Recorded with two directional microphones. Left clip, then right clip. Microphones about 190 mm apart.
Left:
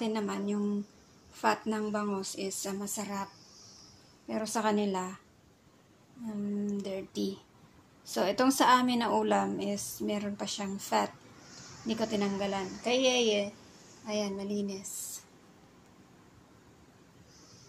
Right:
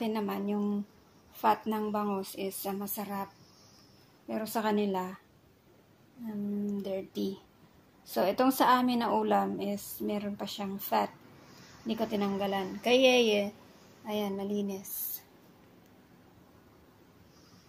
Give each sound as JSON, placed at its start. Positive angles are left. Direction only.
{"t": 0.0, "sound": "a woman's voice", "side_deg": 0}
{"t": 4.3, "sound": "a woman's voice", "side_deg": 0}
{"t": 6.6, "sound": "a woman's voice", "side_deg": 0}
{"t": 12.8, "sound": "a woman's voice", "side_deg": -15}